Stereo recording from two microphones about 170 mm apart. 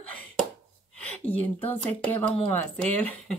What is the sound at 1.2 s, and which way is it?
Speech, 10° left (ahead or behind).